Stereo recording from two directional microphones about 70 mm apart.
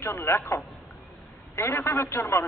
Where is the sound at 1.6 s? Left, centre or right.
Left.